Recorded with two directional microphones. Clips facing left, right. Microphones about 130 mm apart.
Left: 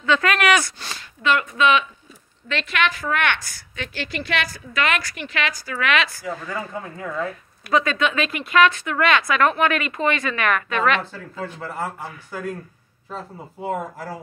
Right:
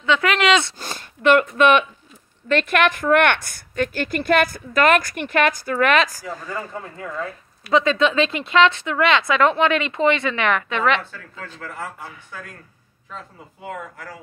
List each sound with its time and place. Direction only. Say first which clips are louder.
0.0 s speech: right 1 dB; 20° right (ahead or behind)
0.7 s a woman's voice: right 3 dB; 45° right (ahead or behind)
6.2 s speech: left 1 dB; 5° left (ahead or behind)
7.7 s speech: right 3 dB; 25° right (ahead or behind)
11.1 s speech: left 6 dB; 30° left (ahead or behind)
13.1 s speech: left 4 dB; 35° left (ahead or behind)